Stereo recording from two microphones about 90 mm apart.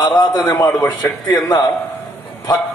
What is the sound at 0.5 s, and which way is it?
Speech, 25° left (ahead or behind).